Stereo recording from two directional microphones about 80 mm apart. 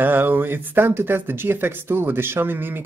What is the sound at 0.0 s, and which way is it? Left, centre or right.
Speech, right.